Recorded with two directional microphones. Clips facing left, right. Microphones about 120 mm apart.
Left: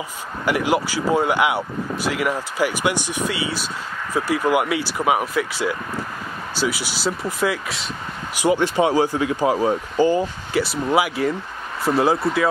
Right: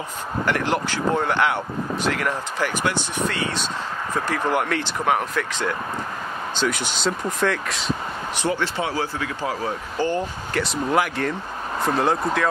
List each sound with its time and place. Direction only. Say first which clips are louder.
0.5 s speech: left 4 dB; 10° left (ahead or behind)